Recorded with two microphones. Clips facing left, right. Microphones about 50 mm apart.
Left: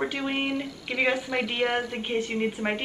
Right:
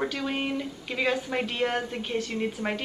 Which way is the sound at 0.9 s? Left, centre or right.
Left.